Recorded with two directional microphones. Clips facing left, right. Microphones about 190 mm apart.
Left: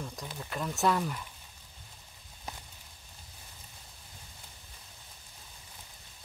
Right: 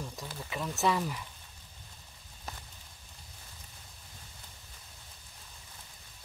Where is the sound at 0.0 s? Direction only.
Centre (ahead or behind).